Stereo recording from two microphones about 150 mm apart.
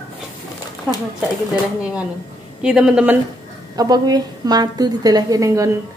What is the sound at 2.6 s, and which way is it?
Speech, 5° right (ahead or behind).